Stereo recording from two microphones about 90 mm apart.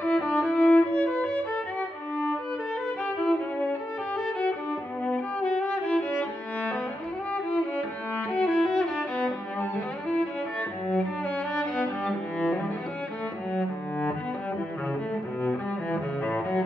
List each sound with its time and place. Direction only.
0.0 s violin: 15° left (ahead or behind)
3.2 s violin: 15° left (ahead or behind)
5.0 s violin: 15° left (ahead or behind)
8.3 s music: 15° left (ahead or behind)
11.5 s music: 15° left (ahead or behind)
15.4 s cello: 15° left (ahead or behind)